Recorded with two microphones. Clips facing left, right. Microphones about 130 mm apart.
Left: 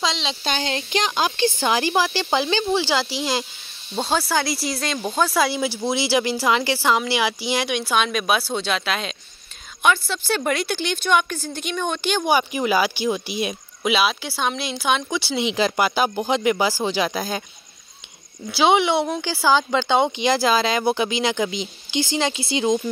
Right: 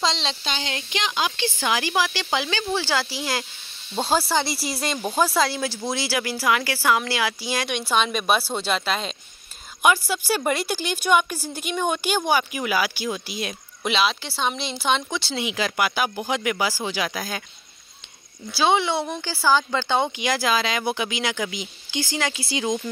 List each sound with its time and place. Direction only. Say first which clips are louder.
0.0 s speech: even; 5° left (ahead or behind)
0.4 s a sound: left 4 dB; 50° left (ahead or behind)
0.7 s speech: left 5 dB; 35° left (ahead or behind)
2.7 s speech: left 3 dB; 15° left (ahead or behind)
3.9 s speech: even; 5° right (ahead or behind)
5.4 s speech: left 2 dB; 10° left (ahead or behind)
7.6 s a woman's voice: right 1 dB; 5° left (ahead or behind)
12.3 s speech: left 5 dB; 25° left (ahead or behind)
13.8 s speech: left 2 dB; 5° left (ahead or behind)
15.4 s speech: left 4 dB; 30° left (ahead or behind)
18.5 s speech: left 3 dB; 15° left (ahead or behind)